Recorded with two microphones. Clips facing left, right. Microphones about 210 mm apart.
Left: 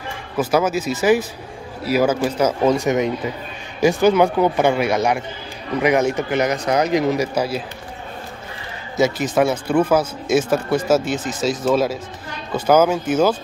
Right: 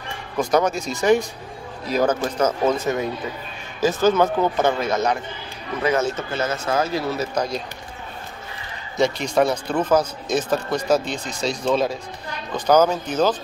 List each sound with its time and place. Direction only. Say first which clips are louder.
0.4 s speech: left 1 dB; 5° left (ahead or behind)
8.9 s speech: left 2 dB; 5° left (ahead or behind)